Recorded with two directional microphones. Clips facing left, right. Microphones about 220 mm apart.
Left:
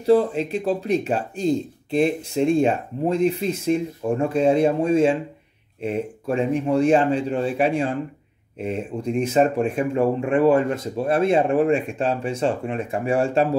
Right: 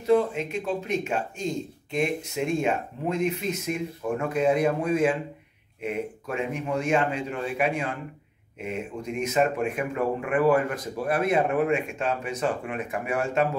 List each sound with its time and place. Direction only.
0.0 s speech: 35° left (ahead or behind)